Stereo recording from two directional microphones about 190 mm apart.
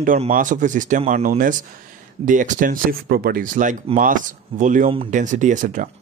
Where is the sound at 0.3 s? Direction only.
45° right (ahead or behind).